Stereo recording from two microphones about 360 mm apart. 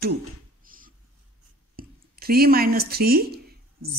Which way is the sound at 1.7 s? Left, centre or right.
Right.